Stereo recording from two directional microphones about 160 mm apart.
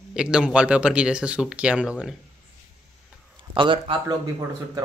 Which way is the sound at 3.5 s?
30° right (ahead or behind).